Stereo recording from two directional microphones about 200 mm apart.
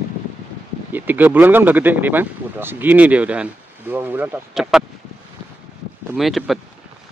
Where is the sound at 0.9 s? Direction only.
10° right (ahead or behind).